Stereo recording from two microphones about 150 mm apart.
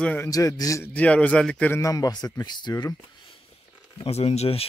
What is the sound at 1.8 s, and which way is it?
Speech, 25° left (ahead or behind).